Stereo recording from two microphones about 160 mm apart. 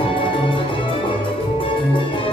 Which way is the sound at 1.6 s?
35° left (ahead or behind).